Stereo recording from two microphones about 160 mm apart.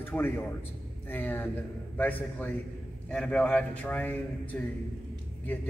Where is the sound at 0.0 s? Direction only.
10° left (ahead or behind).